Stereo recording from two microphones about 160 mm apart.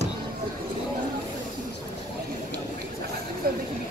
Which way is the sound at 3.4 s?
70° right (ahead or behind).